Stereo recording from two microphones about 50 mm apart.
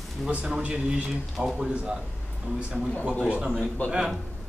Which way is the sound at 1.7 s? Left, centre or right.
Right.